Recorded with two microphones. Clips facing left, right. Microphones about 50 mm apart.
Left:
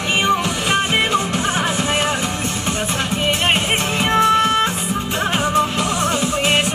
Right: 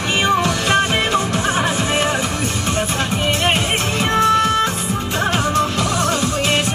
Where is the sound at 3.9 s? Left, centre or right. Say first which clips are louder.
Even; left.